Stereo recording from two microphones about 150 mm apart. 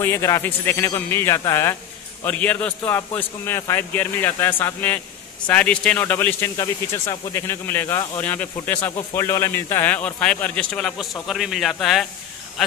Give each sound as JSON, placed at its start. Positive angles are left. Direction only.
{"t": 0.0, "sound": "a man's voice", "side_deg": 20}